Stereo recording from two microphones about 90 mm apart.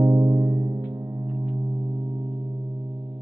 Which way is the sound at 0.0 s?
35° right (ahead or behind).